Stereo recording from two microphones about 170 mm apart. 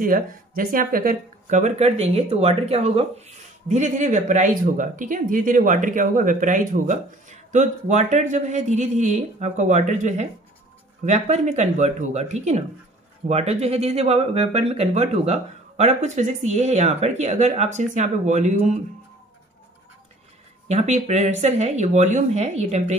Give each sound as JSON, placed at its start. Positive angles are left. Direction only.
{"t": 0.0, "sound": "speech", "side_deg": -55}
{"t": 20.6, "sound": "speech", "side_deg": -40}